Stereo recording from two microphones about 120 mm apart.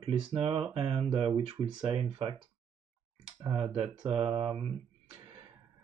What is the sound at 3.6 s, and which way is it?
Speech, 50° right (ahead or behind).